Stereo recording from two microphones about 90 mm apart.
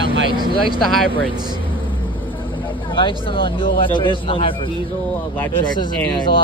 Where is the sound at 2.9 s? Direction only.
65° left (ahead or behind).